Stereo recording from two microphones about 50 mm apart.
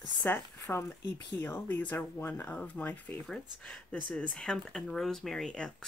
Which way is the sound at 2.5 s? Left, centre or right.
Left.